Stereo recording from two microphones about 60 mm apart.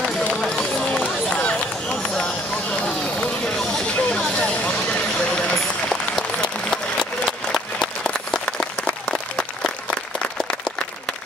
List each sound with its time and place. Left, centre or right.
0.0 s run: centre
3.2 s vehicle: centre
5.3 s run: centre
6.7 s applause: centre
8.0 s applause: centre